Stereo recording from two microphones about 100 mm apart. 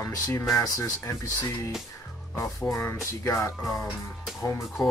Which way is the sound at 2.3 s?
25° left (ahead or behind).